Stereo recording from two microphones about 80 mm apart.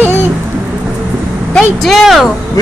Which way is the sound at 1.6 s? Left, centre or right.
Centre.